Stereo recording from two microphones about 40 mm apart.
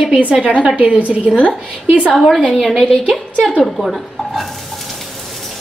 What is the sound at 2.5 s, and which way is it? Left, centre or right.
Speech, centre.